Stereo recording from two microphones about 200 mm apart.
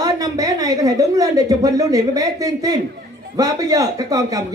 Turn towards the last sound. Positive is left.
turn(degrees=-15)  # may be behind; listen again after turning